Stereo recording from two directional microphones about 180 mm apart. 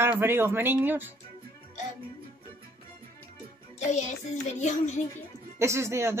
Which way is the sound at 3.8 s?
40° left (ahead or behind).